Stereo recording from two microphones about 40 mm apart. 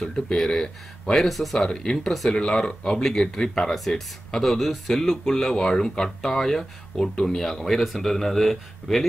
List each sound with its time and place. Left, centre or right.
0.0 s speech: centre
1.6 s speech: centre
2.0 s speech: centre
2.3 s speech: centre